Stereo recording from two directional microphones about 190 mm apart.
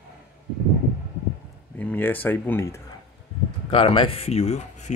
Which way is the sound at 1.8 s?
10° left (ahead or behind).